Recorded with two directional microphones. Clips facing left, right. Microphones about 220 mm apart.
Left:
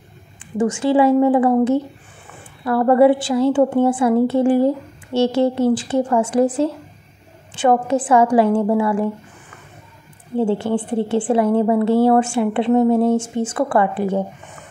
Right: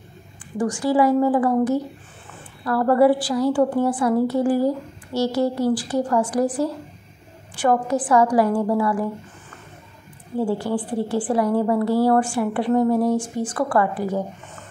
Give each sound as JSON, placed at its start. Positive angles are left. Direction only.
{"t": 0.6, "sound": "a woman's voice", "side_deg": 25}
{"t": 10.3, "sound": "a woman's voice", "side_deg": 25}